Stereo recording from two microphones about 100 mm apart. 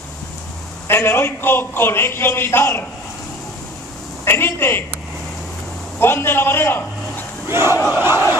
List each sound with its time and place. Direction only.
0.8 s a man's voice: 25° left (ahead or behind)
4.2 s a man's voice: 25° left (ahead or behind)
5.9 s a man's voice: 25° left (ahead or behind)
7.4 s battle cry: 25° right (ahead or behind)